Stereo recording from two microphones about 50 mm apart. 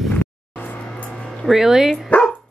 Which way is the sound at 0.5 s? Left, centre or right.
Left.